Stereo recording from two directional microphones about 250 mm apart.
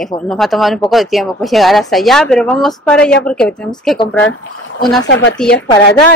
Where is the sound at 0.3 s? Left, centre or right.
Centre.